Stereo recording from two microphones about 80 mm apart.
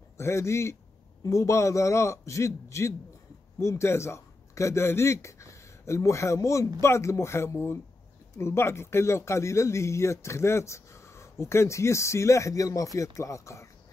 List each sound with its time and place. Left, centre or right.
0.2 s a man's voice: left